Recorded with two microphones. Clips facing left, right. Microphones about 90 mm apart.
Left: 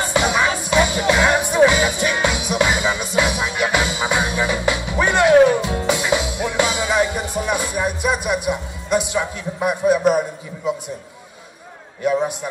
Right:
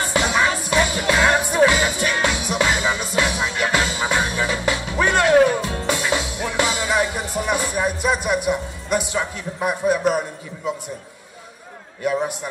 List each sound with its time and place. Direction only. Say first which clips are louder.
0.0 s music: left 1 dB; 10° left (ahead or behind)